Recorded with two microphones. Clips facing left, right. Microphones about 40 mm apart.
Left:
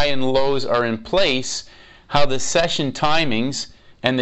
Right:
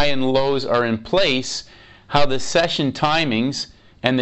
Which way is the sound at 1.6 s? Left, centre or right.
Centre.